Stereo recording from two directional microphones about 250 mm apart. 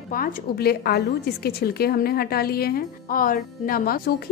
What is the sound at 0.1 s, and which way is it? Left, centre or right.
A woman's voice, left.